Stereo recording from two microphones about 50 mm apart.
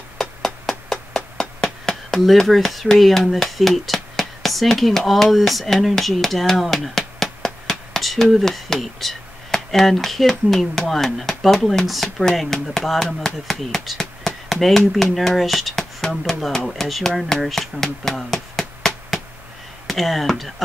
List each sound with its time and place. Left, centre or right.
0.2 s music: centre
7.9 s speech: centre
14.2 s chop: centre
15.1 s speech: centre